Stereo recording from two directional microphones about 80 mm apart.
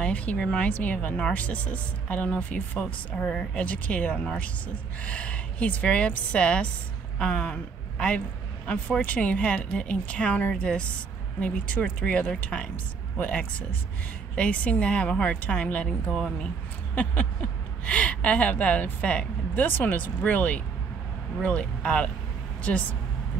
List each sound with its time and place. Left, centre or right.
0.0 s a woman's voice: centre
8.6 s a woman's voice: centre